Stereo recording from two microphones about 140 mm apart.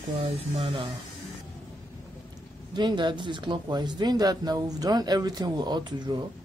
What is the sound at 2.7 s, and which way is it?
Speech, 35° right (ahead or behind).